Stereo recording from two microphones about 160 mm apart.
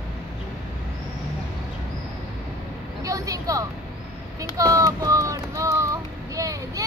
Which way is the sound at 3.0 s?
20° right (ahead or behind).